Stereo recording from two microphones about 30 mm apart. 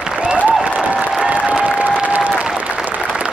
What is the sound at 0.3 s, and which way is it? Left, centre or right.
Applause, right.